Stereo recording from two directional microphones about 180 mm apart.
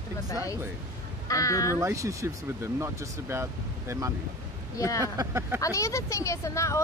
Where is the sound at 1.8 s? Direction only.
15° right (ahead or behind).